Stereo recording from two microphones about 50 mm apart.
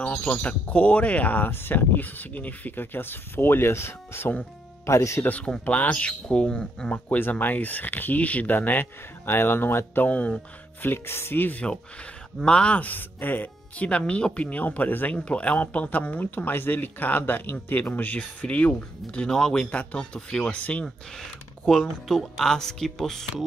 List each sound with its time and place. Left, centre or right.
0.0 s speech: left
4.8 s speech: left
5.4 s speech: left
7.2 s speech: left
8.5 s speech: left
10.0 s speech: left
10.8 s speech: left
11.6 s speech: centre
12.7 s speech: left
15.1 s speech: left
21.2 s speech: centre